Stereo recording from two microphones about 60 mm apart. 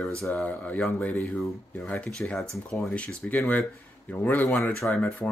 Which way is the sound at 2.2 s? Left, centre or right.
Left.